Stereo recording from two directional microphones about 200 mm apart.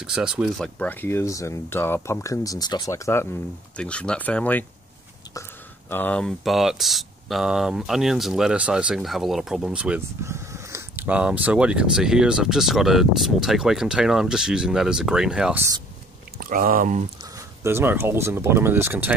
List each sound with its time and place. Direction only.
0.0 s speech: 5° right (ahead or behind)
0.7 s speech: 10° left (ahead or behind)
5.9 s speech: 10° left (ahead or behind)
16.3 s speech: 45° right (ahead or behind)
17.6 s speech: 10° right (ahead or behind)